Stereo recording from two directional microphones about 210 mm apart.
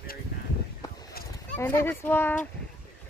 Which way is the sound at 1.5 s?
10° left (ahead or behind).